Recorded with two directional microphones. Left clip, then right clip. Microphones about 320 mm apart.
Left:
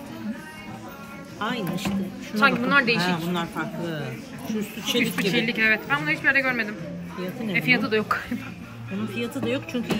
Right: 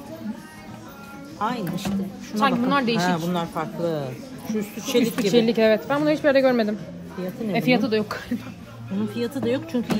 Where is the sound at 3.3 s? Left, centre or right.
Centre.